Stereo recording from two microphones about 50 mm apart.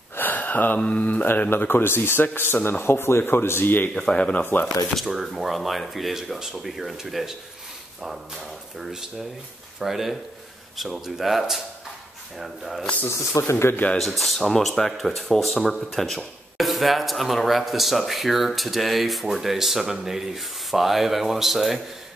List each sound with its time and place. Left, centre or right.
0.1 s a sound: left
0.7 s speech: left
1.5 s speech: left
3.9 s speech: centre
4.9 s speech: centre
9.8 s speech: centre
13.1 s speech: left
13.9 s speech: centre